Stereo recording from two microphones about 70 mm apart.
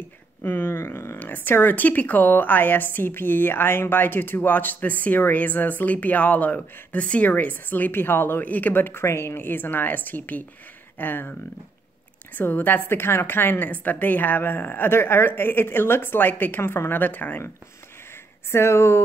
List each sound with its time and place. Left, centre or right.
0.4 s a sound: left
1.2 s a woman's voice: left
12.4 s a woman's voice: left
18.5 s a woman's voice: left